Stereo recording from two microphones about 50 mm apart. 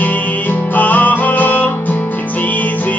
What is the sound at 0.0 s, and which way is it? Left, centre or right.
Music, left.